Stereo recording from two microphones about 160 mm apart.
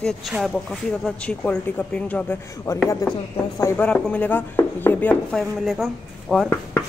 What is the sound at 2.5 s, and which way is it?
Speech, 20° left (ahead or behind).